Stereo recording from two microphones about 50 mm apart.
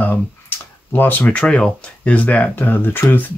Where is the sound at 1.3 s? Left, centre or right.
Left.